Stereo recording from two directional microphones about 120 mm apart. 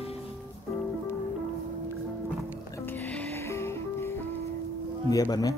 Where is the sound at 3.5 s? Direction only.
20° left (ahead or behind).